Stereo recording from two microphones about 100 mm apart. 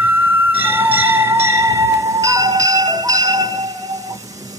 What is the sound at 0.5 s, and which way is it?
Music, 20° right (ahead or behind).